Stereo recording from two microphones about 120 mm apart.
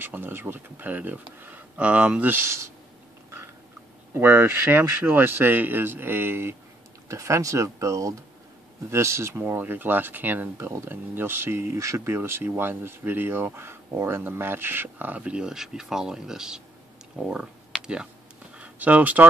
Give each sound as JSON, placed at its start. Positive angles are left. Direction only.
{"t": 0.0, "sound": "speech", "side_deg": -15}
{"t": 4.1, "sound": "speech", "side_deg": -15}